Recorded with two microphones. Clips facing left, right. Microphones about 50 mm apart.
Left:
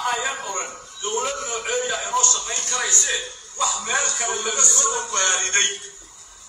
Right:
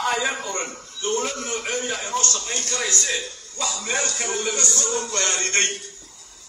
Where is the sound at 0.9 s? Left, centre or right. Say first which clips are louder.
Right 3 dB; right.